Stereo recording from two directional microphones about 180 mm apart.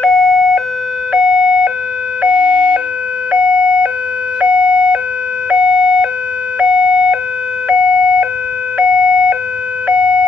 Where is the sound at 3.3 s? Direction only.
5° right (ahead or behind).